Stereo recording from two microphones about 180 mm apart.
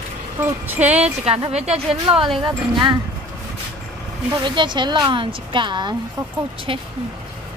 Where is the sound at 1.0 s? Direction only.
35° right (ahead or behind).